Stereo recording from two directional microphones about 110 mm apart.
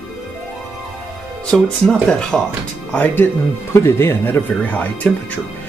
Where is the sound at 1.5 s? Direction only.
5° left (ahead or behind).